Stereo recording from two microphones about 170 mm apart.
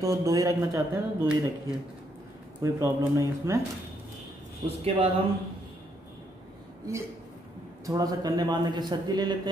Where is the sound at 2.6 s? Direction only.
20° right (ahead or behind).